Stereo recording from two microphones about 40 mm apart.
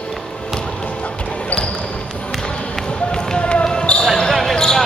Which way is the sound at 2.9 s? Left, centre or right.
Left.